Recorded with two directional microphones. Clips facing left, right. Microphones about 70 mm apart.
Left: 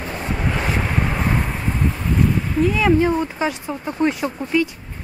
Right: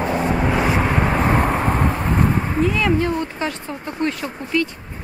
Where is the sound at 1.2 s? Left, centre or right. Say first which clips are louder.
Right 5 dB; right.